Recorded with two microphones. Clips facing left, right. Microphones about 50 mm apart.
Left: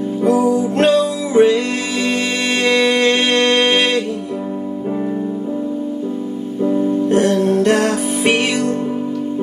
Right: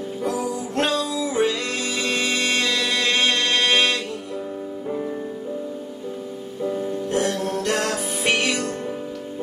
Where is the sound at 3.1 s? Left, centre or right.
Left.